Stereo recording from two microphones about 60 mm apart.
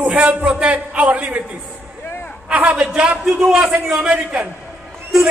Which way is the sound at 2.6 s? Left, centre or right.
Centre.